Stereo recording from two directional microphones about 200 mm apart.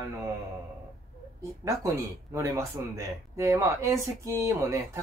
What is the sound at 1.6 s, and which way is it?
Speech, 15° right (ahead or behind).